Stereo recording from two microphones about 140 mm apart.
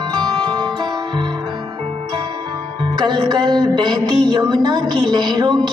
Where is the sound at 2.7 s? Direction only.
30° right (ahead or behind).